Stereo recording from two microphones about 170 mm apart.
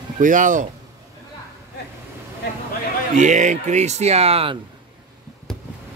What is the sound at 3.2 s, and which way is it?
Speech, 45° right (ahead or behind).